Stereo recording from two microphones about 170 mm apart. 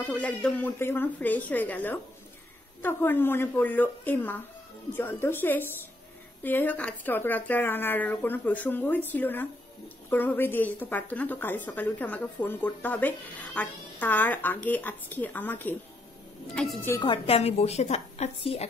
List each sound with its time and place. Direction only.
0.0 s a woman's voice: 10° left (ahead or behind)
17.0 s a woman's voice: 30° left (ahead or behind)